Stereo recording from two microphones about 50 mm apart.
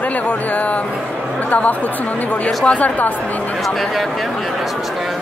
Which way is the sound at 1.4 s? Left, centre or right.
Left.